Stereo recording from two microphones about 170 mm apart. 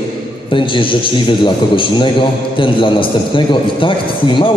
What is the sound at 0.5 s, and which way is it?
A man's voice, 30° left (ahead or behind).